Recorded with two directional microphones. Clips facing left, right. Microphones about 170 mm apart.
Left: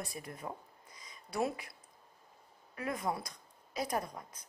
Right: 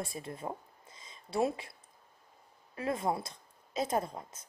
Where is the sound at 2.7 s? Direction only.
25° right (ahead or behind).